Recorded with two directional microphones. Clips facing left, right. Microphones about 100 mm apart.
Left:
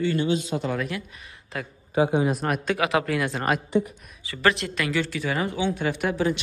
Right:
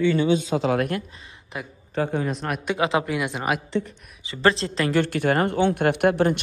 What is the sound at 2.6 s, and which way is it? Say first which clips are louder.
Speech: right 2 dB; 20° right (ahead or behind).